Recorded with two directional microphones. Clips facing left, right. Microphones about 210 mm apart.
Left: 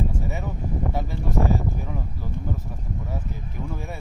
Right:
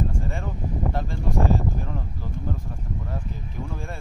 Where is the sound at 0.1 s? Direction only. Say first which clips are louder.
Left 1 dB; 5° left (ahead or behind).